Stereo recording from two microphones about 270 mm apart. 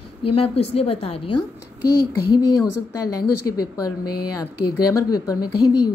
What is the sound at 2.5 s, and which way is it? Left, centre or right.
A woman's voice, left.